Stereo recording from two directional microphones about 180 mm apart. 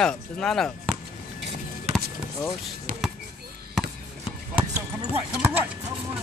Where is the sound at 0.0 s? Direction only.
5° left (ahead or behind).